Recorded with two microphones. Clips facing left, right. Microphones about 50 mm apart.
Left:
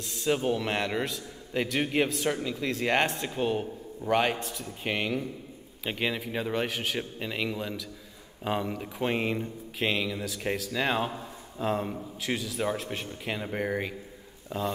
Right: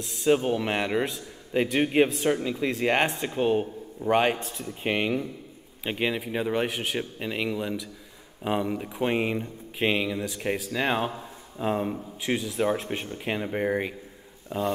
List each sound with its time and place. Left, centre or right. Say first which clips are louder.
0.2 s a man's voice: right 4 dB; centre
4.4 s a man's voice: even; right
4.6 s a man's voice: right 4 dB; centre